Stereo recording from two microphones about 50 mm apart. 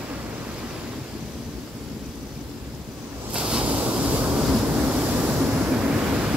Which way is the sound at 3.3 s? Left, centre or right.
Centre.